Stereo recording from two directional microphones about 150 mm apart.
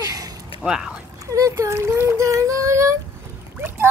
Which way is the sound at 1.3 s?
20° right (ahead or behind).